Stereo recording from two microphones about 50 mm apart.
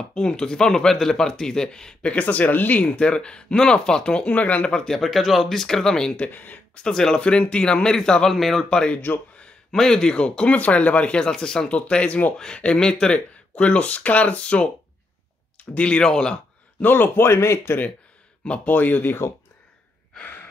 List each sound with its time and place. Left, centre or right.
0.1 s speech: centre
2.0 s speech: left
4.7 s speech: centre
6.1 s speech: left
6.9 s speech: centre
8.6 s speech: centre
8.9 s speech: left
9.7 s speech: centre
15.7 s speech: left
16.8 s speech: left
17.3 s speech: left
18.7 s speech: left
20.2 s a sound: left